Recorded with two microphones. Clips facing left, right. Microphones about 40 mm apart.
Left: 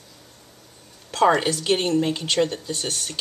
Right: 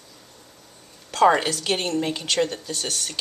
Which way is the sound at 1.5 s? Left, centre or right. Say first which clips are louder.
Left 3 dB; centre.